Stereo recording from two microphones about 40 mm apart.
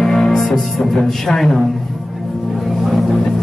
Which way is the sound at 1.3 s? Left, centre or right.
Centre.